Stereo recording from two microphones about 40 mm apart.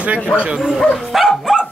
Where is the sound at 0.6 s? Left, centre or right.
Centre.